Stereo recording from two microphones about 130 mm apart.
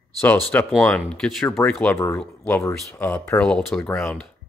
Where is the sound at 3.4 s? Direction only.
5° left (ahead or behind).